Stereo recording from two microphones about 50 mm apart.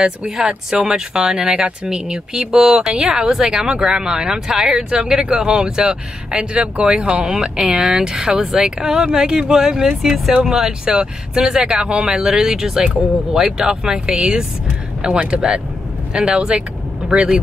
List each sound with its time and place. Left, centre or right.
0.0 s speech: centre